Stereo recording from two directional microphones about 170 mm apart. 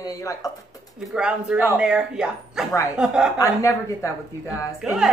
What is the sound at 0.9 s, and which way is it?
Speech, 5° right (ahead or behind).